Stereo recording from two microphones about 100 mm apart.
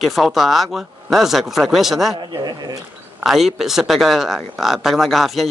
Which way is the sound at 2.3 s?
45° right (ahead or behind).